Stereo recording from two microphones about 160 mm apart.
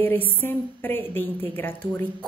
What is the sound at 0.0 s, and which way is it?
A woman's voice, 15° left (ahead or behind).